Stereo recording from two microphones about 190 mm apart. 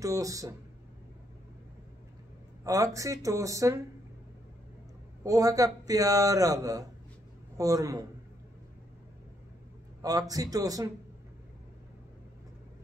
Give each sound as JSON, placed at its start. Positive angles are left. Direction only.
{"t": 0.0, "sound": "a man's voice", "side_deg": -15}
{"t": 2.6, "sound": "a man's voice", "side_deg": -15}
{"t": 5.2, "sound": "a man's voice", "side_deg": -15}
{"t": 10.0, "sound": "speech", "side_deg": -20}